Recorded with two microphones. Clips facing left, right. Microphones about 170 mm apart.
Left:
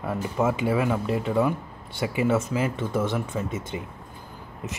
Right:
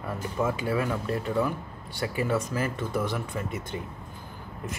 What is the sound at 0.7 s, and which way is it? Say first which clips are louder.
Speech: left 4 dB; 15° left (ahead or behind).